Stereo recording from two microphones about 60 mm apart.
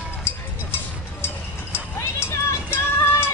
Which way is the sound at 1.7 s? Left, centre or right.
Left.